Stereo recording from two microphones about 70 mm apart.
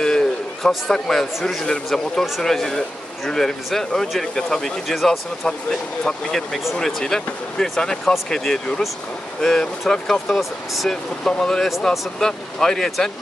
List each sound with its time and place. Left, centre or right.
0.0 s a man's voice: centre
5.5 s speech: centre